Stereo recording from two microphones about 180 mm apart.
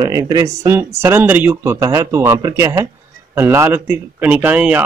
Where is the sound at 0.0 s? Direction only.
20° right (ahead or behind).